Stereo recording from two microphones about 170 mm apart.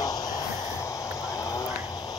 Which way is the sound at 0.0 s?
20° left (ahead or behind).